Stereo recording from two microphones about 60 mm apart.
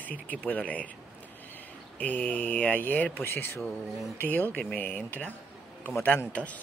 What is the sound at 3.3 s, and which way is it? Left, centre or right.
Speech, left.